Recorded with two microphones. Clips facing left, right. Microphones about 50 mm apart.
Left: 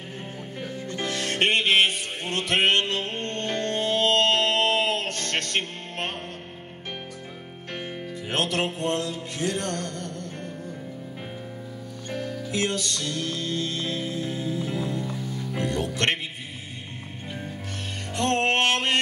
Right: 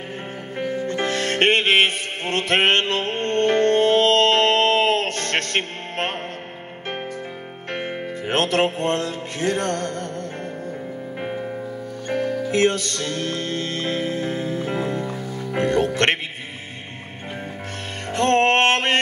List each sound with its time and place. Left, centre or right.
0.6 s music: right
7.7 s music: right
12.1 s music: right
18.1 s music: right